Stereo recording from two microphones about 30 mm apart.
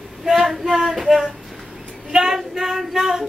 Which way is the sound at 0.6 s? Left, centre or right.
Centre.